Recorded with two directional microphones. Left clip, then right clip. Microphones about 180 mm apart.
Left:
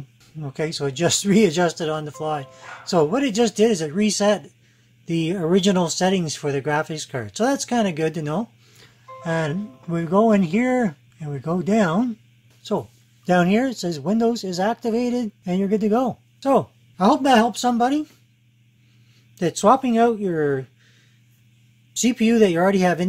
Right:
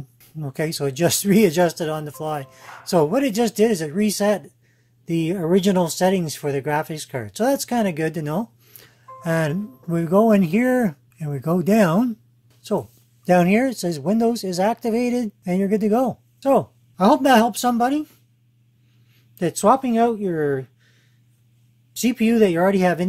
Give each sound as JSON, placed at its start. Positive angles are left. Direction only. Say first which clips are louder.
{"t": 0.2, "sound": "speech", "louder": "right 1 dB", "side_deg": -25}
{"t": 12.7, "sound": "speech", "louder": "right 1 dB", "side_deg": 0}
{"t": 17.5, "sound": "speech", "louder": "even", "side_deg": -30}
{"t": 17.8, "sound": "speech", "louder": "even", "side_deg": 0}
{"t": 19.3, "sound": "speech", "louder": "even", "side_deg": 0}
{"t": 22.0, "sound": "speech", "louder": "even", "side_deg": -5}